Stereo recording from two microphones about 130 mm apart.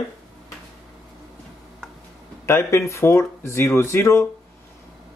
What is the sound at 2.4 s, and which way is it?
Speech, 20° left (ahead or behind).